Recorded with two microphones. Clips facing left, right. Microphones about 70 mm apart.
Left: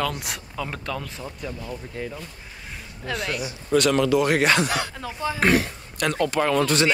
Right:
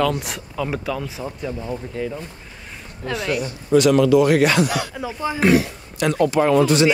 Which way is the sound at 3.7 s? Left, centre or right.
Left.